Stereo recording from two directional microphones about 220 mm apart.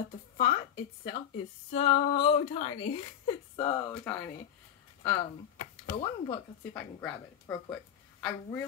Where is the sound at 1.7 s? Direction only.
25° left (ahead or behind).